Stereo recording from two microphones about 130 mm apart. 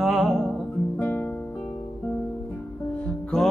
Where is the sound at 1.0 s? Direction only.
15° left (ahead or behind).